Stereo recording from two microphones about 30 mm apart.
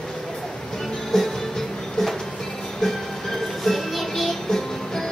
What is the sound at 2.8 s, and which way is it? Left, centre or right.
Music, centre.